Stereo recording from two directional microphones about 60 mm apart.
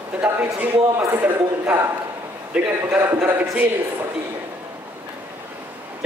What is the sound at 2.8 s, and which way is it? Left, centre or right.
Speech, right.